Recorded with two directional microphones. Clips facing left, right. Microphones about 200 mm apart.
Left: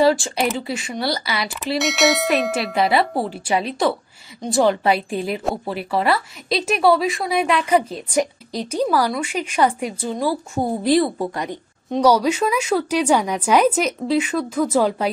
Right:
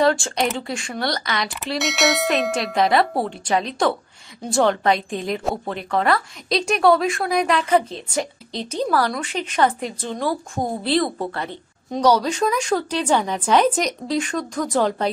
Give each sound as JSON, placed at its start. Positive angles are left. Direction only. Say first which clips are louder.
{"t": 0.0, "sound": "a woman's voice", "louder": "left 2 dB", "side_deg": 0}